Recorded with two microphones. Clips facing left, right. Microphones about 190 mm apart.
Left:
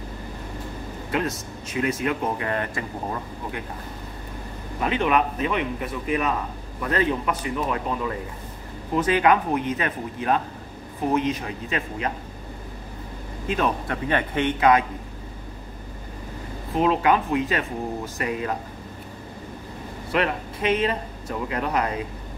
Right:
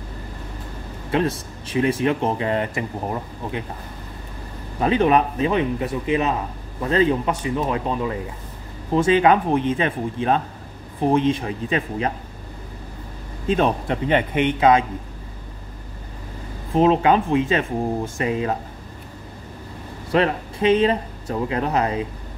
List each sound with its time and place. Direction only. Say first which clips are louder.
1.1 s speech: right 5 dB; 30° right (ahead or behind)
4.7 s a man's voice: right 5 dB; 30° right (ahead or behind)
13.5 s speech: right 5 dB; 25° right (ahead or behind)
16.7 s speech: right 4 dB; 30° right (ahead or behind)
20.1 s speech: right 5 dB; 30° right (ahead or behind)